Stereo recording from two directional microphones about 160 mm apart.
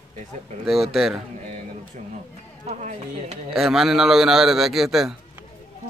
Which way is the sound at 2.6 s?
45° right (ahead or behind).